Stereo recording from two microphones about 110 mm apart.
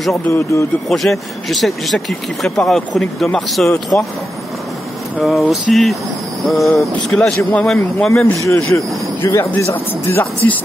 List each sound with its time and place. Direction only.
0.3 s speech: 25° left (ahead or behind)
0.8 s speech: centre (ahead or behind)
5.5 s speech: centre (ahead or behind)
8.1 s speech: 25° left (ahead or behind)